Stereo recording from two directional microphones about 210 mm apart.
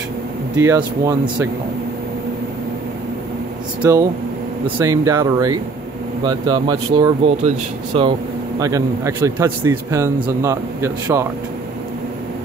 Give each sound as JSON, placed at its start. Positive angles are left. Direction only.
{"t": 0.6, "sound": "a man's voice", "side_deg": -15}
{"t": 3.8, "sound": "a man's voice", "side_deg": -15}